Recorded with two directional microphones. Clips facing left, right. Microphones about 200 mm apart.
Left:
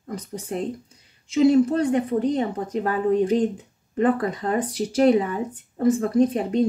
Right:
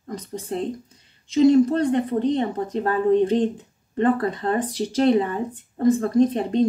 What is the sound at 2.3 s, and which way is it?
Speech, 30° right (ahead or behind).